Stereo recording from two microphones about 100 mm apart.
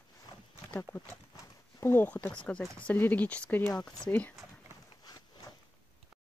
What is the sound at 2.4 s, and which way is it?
Speech, 10° left (ahead or behind).